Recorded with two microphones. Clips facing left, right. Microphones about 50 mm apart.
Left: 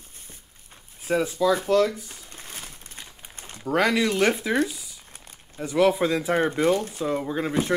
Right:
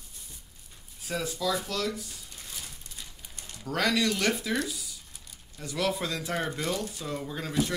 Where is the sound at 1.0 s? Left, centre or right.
Left.